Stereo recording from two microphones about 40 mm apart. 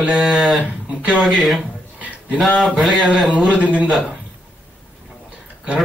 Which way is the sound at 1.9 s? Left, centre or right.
Right.